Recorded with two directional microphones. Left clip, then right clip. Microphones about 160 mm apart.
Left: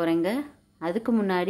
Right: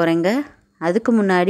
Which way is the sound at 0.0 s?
40° right (ahead or behind).